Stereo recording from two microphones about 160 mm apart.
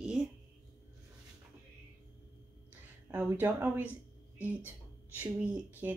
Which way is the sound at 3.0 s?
15° right (ahead or behind).